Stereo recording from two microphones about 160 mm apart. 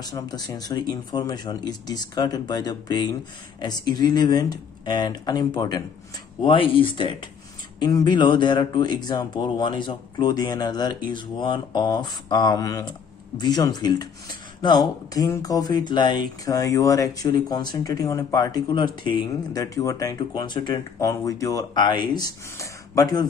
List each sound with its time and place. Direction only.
0.0 s speech: 25° left (ahead or behind)